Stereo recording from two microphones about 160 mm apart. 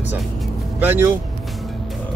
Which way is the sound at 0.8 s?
15° right (ahead or behind).